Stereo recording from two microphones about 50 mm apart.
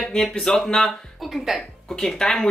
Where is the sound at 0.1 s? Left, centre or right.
Centre.